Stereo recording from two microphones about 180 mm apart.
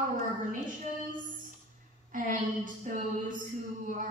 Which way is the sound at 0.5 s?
45° right (ahead or behind).